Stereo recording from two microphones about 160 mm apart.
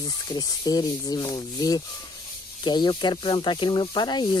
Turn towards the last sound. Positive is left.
turn(degrees=25)  # may be behind; listen again after turning